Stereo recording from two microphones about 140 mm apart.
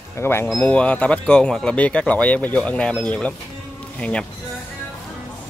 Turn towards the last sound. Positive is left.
turn(degrees=5)  # may be behind; listen again after turning